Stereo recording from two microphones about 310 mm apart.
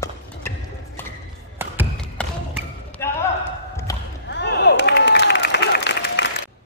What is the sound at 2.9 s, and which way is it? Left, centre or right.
Basketball bounce, centre.